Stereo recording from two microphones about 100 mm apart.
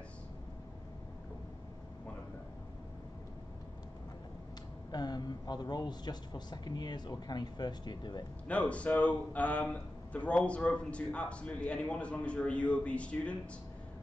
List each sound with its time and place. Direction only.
4.9 s a man's voice: 45° left (ahead or behind)
8.5 s speech: 15° left (ahead or behind)